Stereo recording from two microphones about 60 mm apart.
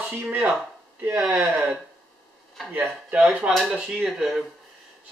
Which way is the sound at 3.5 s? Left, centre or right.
Centre.